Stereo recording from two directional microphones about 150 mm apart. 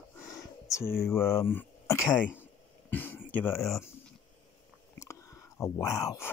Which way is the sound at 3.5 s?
Centre (ahead or behind).